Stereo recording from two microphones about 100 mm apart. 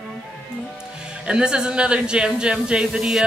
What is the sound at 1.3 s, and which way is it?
A woman's voice, 10° right (ahead or behind).